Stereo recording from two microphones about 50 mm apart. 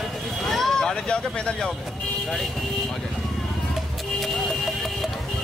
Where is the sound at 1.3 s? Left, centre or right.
Centre.